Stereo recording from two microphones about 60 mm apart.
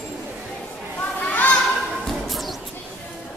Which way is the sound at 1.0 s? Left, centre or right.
Left.